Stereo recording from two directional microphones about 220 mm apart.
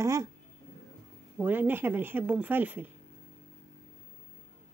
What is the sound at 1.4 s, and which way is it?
Speech, 10° right (ahead or behind).